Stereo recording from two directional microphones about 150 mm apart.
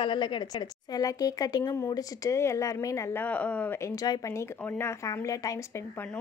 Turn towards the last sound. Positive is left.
turn(degrees=20)  # may be behind; listen again after turning